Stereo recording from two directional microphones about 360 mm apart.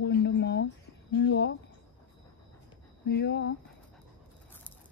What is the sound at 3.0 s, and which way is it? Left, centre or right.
Speech, left.